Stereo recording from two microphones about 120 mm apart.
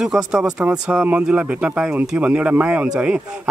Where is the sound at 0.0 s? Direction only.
5° right (ahead or behind).